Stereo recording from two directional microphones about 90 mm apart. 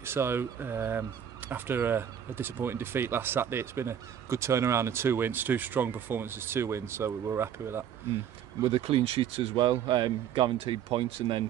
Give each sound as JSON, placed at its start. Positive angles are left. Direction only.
{"t": 0.0, "sound": "speech", "side_deg": -25}
{"t": 8.6, "sound": "speech", "side_deg": -90}
{"t": 9.7, "sound": "speech", "side_deg": -55}